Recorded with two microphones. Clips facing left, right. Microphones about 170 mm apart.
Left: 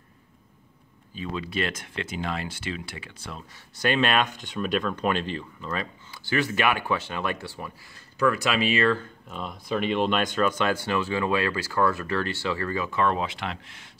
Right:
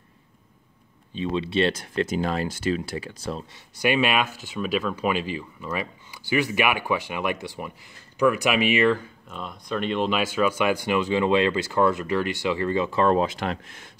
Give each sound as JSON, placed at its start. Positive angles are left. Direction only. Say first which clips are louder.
{"t": 1.1, "sound": "speech", "louder": "right 6 dB", "side_deg": -25}
{"t": 3.7, "sound": "speech", "louder": "right 1 dB", "side_deg": -10}
{"t": 9.3, "sound": "speech", "louder": "left 1 dB", "side_deg": 0}